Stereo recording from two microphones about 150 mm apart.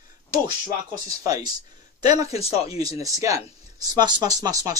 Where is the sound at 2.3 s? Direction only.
45° left (ahead or behind).